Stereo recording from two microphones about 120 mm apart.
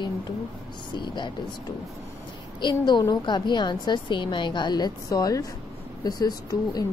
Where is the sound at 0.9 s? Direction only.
40° left (ahead or behind).